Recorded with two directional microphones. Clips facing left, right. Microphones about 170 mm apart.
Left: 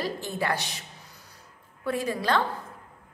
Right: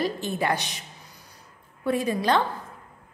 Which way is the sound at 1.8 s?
20° right (ahead or behind).